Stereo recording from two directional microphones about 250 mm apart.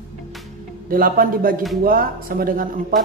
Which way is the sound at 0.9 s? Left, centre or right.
Right.